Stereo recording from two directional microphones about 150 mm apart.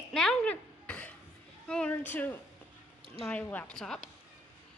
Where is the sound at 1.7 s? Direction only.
10° left (ahead or behind).